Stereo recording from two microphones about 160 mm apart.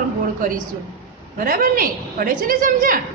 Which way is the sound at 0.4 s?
55° right (ahead or behind).